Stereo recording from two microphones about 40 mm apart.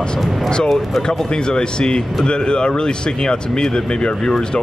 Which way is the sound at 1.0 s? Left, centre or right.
Left.